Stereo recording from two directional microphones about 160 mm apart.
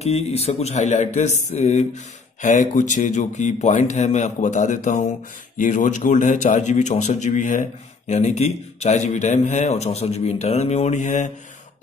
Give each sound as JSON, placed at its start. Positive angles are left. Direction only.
{"t": 0.0, "sound": "a man's voice", "side_deg": 40}